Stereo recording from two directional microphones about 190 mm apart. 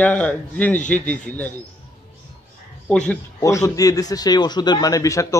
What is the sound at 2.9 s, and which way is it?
Speech, 5° left (ahead or behind).